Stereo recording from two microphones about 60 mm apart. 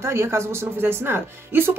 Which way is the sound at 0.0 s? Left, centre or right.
Right.